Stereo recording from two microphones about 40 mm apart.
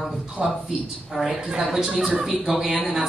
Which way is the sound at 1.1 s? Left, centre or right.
Centre.